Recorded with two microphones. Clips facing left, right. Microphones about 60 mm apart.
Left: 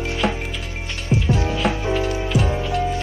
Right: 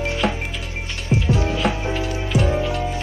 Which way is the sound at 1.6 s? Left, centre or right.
Centre.